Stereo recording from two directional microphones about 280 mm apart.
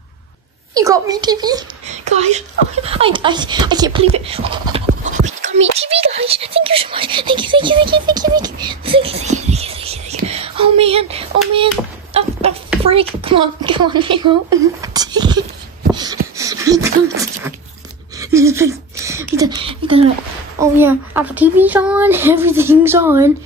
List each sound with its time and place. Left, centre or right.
0.7 s a woman's voice: centre
1.9 s a woman's voice: right
15.9 s a sound: centre
20.7 s a woman's voice: centre